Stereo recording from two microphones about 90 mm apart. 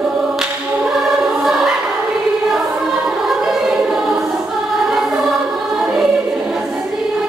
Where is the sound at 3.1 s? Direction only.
5° right (ahead or behind).